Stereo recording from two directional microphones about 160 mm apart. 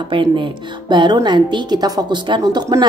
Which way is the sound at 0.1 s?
30° right (ahead or behind).